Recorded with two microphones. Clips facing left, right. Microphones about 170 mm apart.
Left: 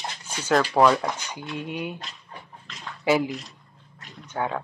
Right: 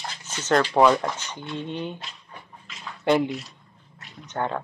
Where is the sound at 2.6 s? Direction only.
Centre (ahead or behind).